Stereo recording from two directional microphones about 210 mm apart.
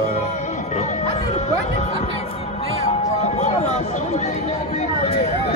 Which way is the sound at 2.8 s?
30° left (ahead or behind).